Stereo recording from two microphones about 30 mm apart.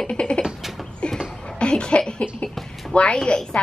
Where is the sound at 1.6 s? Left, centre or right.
Left.